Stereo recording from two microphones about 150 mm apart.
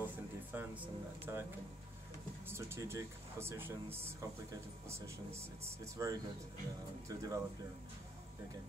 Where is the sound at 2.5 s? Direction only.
20° right (ahead or behind).